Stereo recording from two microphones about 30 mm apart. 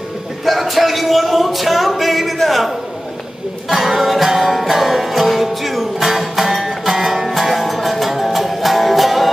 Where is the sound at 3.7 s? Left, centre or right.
Centre.